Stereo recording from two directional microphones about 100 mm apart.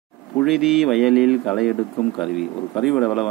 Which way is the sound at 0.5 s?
5° right (ahead or behind).